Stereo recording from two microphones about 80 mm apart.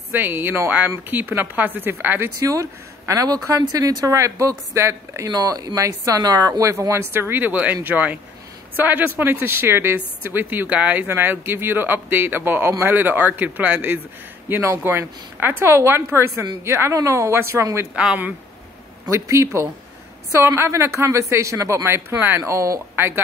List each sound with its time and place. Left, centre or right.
0.1 s a woman's voice: right
5.3 s a woman's voice: right
6.6 s a woman's voice: right
17.9 s speech: centre
19.0 s speech: right